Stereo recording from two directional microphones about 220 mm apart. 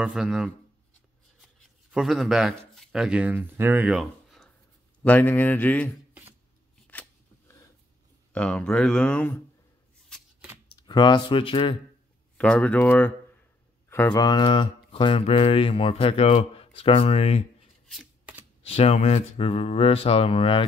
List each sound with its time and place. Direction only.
0.0 s speech: 5° right (ahead or behind)
6.9 s scissors: 5° left (ahead or behind)
8.3 s speech: 5° left (ahead or behind)
10.0 s shuffling cards: centre (ahead or behind)
10.9 s speech: 20° left (ahead or behind)
12.4 s speech: 5° left (ahead or behind); by 17.5 s 30° left (ahead or behind)
17.8 s shuffling cards: 5° right (ahead or behind)
18.7 s speech: 25° left (ahead or behind)